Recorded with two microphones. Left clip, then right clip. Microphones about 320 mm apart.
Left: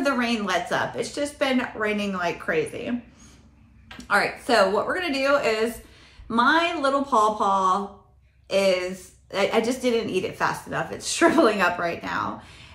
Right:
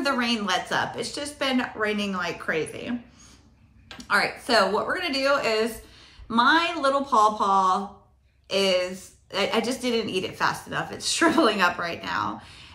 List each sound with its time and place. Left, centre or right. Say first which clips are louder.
0.0 s a woman's voice: left 1 dB; centre
4.0 s a woman's voice: left 1 dB; centre